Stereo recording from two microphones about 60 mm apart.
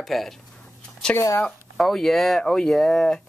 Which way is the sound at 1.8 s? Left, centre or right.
Centre.